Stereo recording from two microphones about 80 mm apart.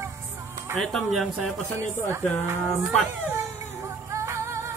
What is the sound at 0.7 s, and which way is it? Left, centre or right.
Speech, centre.